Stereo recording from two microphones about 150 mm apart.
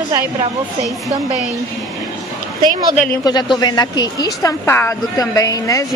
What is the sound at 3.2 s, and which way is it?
Speech, 30° left (ahead or behind).